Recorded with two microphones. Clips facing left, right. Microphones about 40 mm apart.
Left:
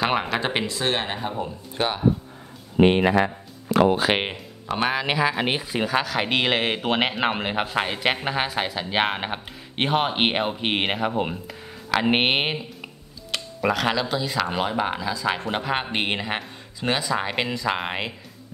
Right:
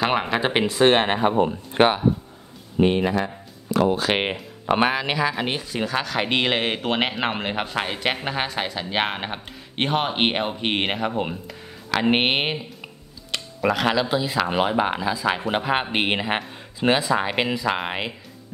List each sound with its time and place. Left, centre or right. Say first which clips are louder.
0.0 s speech: right 2 dB; centre
0.7 s speech: right 8 dB; right
2.8 s speech: left 2 dB; left
4.7 s speech: right 6 dB; right
5.0 s speech: left 1 dB; centre